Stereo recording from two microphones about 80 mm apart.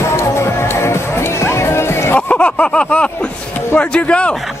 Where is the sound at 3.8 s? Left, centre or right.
Centre.